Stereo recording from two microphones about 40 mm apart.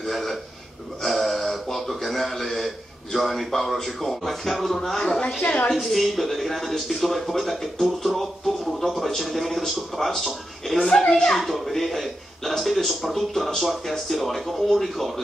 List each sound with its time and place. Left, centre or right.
0.0 s a sound: centre
1.0 s speech: centre
5.4 s a woman's voice: left
5.9 s speech: centre
10.9 s a woman's voice: centre
11.3 s speech: centre